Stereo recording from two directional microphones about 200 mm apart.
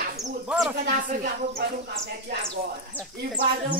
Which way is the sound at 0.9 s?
40° right (ahead or behind).